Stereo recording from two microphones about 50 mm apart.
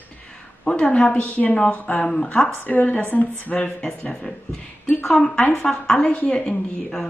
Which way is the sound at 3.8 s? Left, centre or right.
Centre.